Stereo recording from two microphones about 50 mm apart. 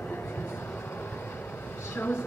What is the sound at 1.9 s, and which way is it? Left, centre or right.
Speech, left.